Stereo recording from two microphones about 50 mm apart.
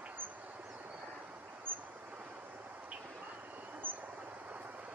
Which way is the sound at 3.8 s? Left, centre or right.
Right.